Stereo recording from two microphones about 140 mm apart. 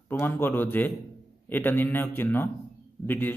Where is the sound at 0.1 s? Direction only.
15° left (ahead or behind).